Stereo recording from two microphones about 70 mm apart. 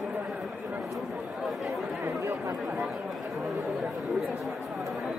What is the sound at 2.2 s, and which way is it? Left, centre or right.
Chatter, right.